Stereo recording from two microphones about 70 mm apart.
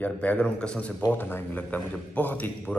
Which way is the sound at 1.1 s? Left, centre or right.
Left.